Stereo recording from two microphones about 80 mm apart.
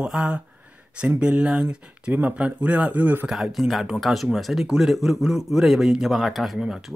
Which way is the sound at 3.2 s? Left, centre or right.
Centre.